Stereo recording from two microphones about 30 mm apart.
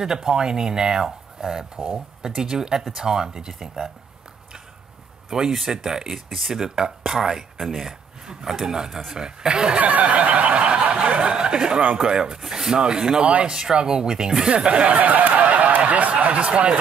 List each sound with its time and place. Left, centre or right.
0.0 s speech: centre
5.3 s speech: right
9.8 s snicker: right
11.3 s chuckle: right
12.0 s speech: right
12.4 s speech: centre
12.7 s speech: right
13.5 s speech: right
14.7 s speech: right
15.0 s speech: right
15.4 s snicker: right
16.3 s speech: right